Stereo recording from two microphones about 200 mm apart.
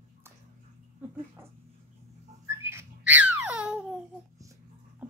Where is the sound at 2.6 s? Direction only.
10° right (ahead or behind).